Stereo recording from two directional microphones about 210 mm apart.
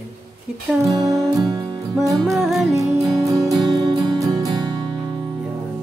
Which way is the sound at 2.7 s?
15° right (ahead or behind).